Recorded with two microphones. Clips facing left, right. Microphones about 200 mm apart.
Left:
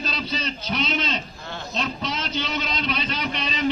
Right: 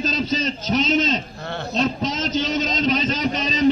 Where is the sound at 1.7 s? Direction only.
40° right (ahead or behind).